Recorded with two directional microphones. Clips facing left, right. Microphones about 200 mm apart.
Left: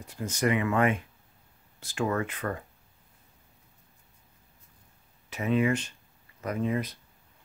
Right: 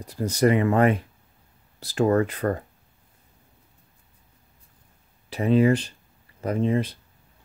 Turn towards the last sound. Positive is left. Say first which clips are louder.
# right 6 dB
turn(degrees=-30)  # may be behind; listen again after turning